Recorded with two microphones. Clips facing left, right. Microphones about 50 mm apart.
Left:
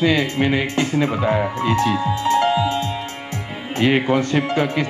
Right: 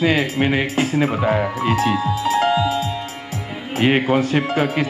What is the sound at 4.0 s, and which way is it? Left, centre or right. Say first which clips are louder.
Speech: right 1 dB; centre.